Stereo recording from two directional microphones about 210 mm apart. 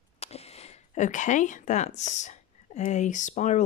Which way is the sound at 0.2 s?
30° left (ahead or behind).